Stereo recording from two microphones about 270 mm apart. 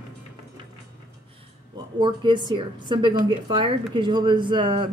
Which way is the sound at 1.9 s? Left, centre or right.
Centre.